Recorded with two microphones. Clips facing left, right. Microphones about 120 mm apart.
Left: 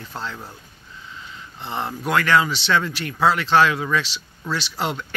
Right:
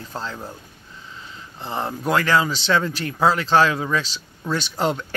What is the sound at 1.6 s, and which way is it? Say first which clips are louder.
Speech: right 1 dB; 35° right (ahead or behind).